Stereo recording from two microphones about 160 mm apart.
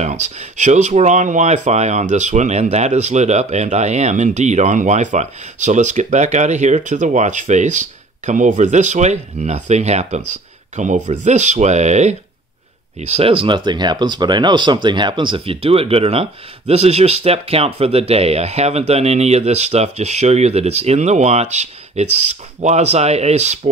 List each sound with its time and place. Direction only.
0.0 s speech: 45° right (ahead or behind)